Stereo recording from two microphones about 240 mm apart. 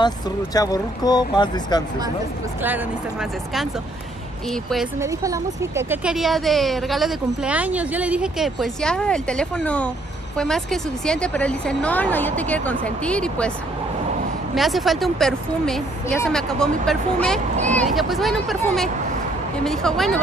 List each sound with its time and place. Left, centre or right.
0.6 s speech: centre
2.6 s a woman's voice: centre
5.0 s a woman's voice: centre
14.5 s a woman's voice: centre